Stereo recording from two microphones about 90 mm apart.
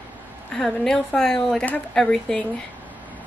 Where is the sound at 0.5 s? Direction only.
5° left (ahead or behind).